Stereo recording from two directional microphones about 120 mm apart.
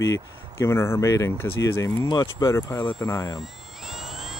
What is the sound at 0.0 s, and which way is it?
Speech, 25° left (ahead or behind).